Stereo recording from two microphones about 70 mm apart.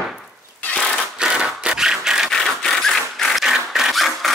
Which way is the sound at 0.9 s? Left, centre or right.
Centre.